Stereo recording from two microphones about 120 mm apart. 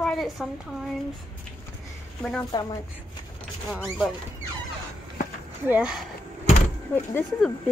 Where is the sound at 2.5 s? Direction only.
40° left (ahead or behind).